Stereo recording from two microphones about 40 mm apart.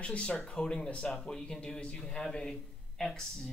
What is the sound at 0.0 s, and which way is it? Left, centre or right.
Speech, left.